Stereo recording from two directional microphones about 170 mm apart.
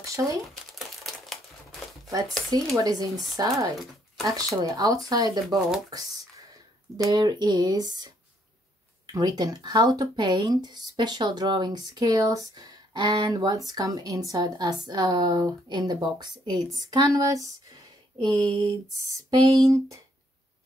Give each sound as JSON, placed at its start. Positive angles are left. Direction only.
{"t": 0.0, "sound": "speech", "side_deg": -20}
{"t": 0.7, "sound": "crumpling", "side_deg": 0}
{"t": 2.0, "sound": "speech", "side_deg": -20}
{"t": 7.0, "sound": "speech", "side_deg": -25}
{"t": 18.4, "sound": "a sound", "side_deg": -35}
{"t": 19.1, "sound": "speech", "side_deg": -20}